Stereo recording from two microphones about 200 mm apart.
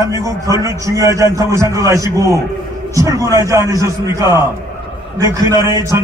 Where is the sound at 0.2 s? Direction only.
15° right (ahead or behind).